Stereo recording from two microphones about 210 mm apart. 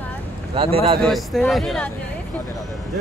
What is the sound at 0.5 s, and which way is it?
Speech, 30° right (ahead or behind).